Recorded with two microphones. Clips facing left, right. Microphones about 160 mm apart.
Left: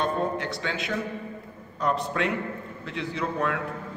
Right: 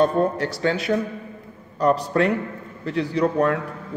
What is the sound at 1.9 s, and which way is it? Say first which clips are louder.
A man's voice: right 7 dB; 40° right (ahead or behind).